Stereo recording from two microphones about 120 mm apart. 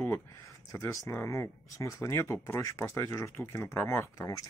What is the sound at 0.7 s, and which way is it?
Speech, 25° left (ahead or behind).